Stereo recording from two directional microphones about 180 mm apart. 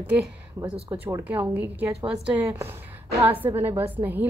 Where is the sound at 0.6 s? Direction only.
20° right (ahead or behind).